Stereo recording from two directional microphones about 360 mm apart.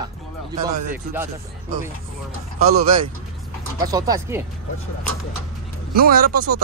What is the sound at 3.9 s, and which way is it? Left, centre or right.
Speech, centre.